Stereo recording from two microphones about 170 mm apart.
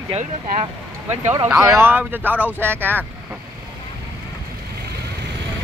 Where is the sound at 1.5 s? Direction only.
15° right (ahead or behind).